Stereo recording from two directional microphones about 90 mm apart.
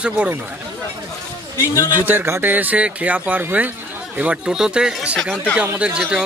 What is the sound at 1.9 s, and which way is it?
Speech, 20° right (ahead or behind).